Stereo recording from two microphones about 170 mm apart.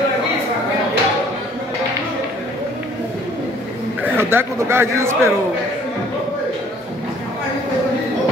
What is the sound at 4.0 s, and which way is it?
A man's voice, 15° right (ahead or behind).